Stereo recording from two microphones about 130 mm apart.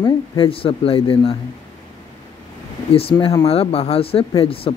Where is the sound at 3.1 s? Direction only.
25° left (ahead or behind).